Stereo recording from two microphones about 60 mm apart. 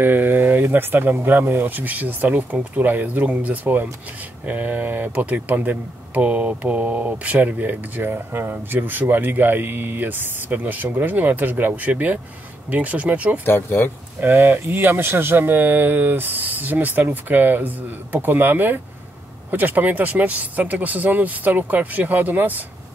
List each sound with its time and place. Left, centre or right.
0.0 s speech: right
13.7 s speech: left
14.2 s speech: right